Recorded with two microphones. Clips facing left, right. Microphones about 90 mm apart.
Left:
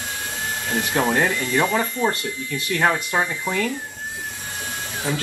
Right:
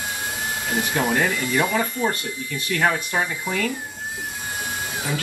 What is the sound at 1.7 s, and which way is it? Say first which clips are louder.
Speech: left 1 dB; 20° left (ahead or behind).